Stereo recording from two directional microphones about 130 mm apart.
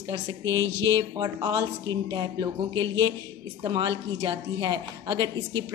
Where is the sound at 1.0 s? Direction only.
30° right (ahead or behind).